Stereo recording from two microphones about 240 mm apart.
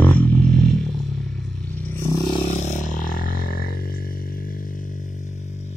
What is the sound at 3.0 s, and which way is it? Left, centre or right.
Music, left.